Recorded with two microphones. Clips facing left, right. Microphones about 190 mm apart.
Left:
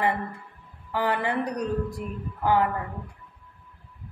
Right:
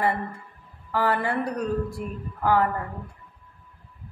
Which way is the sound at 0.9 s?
15° left (ahead or behind).